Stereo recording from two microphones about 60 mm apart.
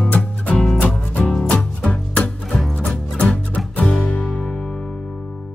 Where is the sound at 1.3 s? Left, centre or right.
Centre.